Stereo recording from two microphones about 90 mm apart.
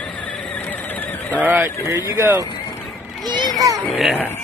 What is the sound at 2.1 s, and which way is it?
Speech, 30° right (ahead or behind).